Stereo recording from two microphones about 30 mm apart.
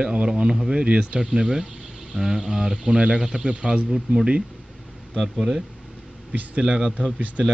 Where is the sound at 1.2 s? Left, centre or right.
Centre.